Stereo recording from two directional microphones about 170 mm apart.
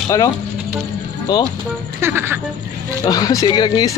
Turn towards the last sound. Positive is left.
turn(degrees=25)  # may be behind; listen again after turning